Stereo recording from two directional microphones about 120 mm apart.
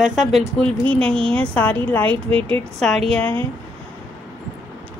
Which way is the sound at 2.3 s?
50° right (ahead or behind).